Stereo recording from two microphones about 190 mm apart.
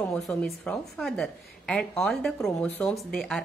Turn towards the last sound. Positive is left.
turn(degrees=0)  # may be behind; listen again after turning